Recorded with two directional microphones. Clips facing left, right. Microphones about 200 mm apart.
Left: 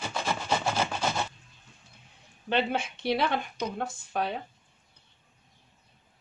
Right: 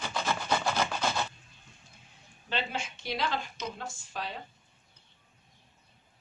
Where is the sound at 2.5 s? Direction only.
60° left (ahead or behind).